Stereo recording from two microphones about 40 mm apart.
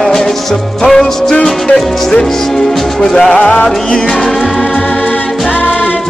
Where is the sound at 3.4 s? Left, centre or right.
Left.